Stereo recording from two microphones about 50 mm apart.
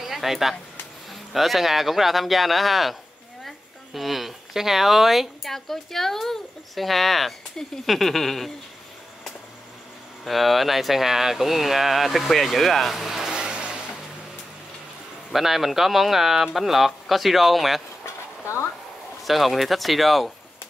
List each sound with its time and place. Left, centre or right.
0.0 s a woman's voice: centre
10.2 s a woman's voice: centre
13.3 s vehicle: centre
15.3 s a woman's voice: centre
18.0 s a sound: left
19.2 s a woman's voice: centre